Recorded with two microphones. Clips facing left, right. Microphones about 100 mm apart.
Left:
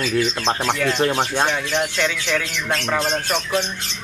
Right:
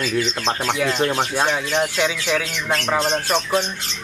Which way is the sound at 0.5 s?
10° left (ahead or behind).